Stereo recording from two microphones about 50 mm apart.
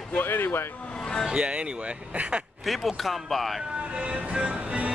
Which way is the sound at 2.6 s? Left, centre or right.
Centre.